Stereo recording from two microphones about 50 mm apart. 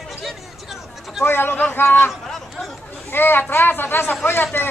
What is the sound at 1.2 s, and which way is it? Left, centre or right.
Speech, left.